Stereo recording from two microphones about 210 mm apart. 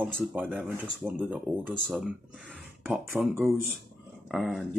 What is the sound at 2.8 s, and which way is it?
Speech, centre (ahead or behind).